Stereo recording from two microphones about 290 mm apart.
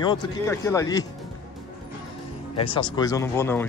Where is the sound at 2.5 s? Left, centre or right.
Centre.